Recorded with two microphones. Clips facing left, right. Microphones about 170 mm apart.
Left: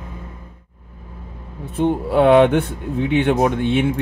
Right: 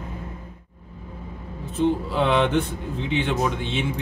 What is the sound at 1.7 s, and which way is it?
Speech, 55° left (ahead or behind).